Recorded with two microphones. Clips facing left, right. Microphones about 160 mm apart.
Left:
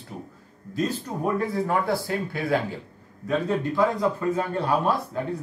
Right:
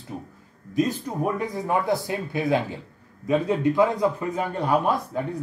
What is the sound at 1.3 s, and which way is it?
A man's voice, 15° right (ahead or behind).